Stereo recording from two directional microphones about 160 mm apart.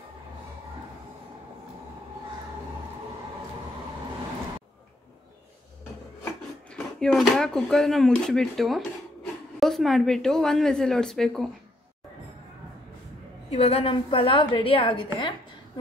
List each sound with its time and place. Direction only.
6.7 s speech: 5° left (ahead or behind)
13.5 s a woman's voice: 40° left (ahead or behind)